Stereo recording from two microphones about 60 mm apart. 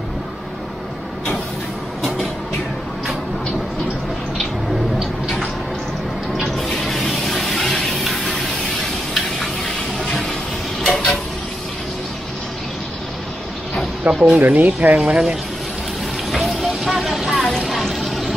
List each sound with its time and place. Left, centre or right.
6.5 s music: centre
8.8 s a sound: centre
10.8 s vehicle: centre
14.1 s speech: centre
14.4 s speech: right
15.0 s speech: centre
16.3 s a sound: centre